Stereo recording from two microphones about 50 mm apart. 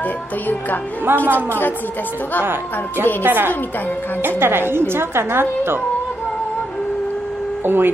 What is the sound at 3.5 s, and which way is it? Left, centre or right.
Speech, left.